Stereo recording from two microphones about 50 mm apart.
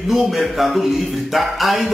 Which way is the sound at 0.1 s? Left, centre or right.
Centre.